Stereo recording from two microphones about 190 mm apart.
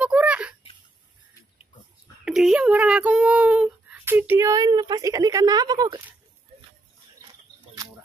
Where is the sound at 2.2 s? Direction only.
5° right (ahead or behind); by 6.0 s 20° right (ahead or behind).